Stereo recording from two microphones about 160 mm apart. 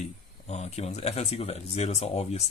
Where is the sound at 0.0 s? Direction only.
45° left (ahead or behind).